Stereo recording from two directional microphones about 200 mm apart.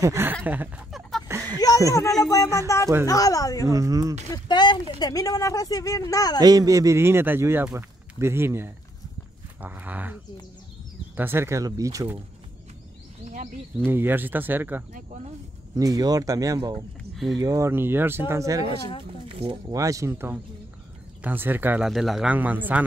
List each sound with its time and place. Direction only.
0.0 s speech: 10° right (ahead or behind)
1.9 s speech: 15° left (ahead or behind)
3.7 s speech: 15° right (ahead or behind)
4.3 s speech: 20° left (ahead or behind)
6.4 s speech: 20° right (ahead or behind)
13.2 s a sound: 40° right (ahead or behind)
13.8 s speech: 10° right (ahead or behind)
17.1 s a sound: centre (ahead or behind)
17.4 s speech: 15° right (ahead or behind)
19.2 s speech: 25° right (ahead or behind); by 22.8 s 10° right (ahead or behind)